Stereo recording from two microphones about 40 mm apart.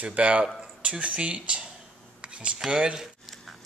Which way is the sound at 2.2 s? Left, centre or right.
Right.